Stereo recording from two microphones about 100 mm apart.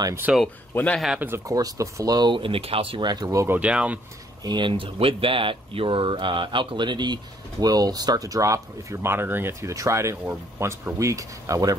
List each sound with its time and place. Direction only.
0.3 s speech: 10° right (ahead or behind)
1.2 s speech: 30° right (ahead or behind)
3.4 s speech: 15° right (ahead or behind)
4.4 s speech: 50° right (ahead or behind)
9.0 s speech: 25° right (ahead or behind)